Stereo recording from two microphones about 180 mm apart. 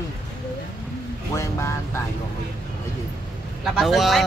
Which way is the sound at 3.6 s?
Centre (ahead or behind).